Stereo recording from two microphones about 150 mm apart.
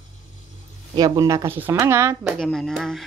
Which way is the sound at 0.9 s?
25° right (ahead or behind).